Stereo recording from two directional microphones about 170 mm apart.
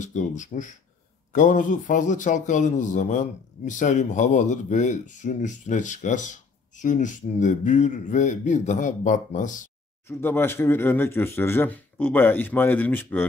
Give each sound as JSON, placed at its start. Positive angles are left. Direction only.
{"t": 0.0, "sound": "a man's voice", "side_deg": 45}
{"t": 10.0, "sound": "speech", "side_deg": 15}